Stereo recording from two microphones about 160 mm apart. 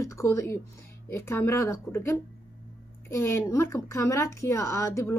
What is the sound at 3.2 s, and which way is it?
Speech, 15° left (ahead or behind).